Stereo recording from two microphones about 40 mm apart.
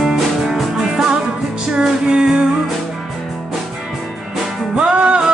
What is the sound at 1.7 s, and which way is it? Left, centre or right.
Music, right.